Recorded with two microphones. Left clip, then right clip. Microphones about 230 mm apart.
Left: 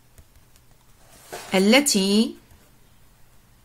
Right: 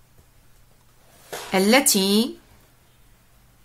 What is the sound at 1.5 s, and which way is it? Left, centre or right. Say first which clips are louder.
Speech: even; centre.